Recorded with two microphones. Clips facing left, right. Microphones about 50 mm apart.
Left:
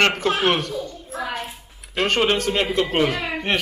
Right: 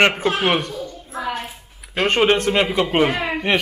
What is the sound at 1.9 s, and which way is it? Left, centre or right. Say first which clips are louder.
Speech: right 3 dB; right.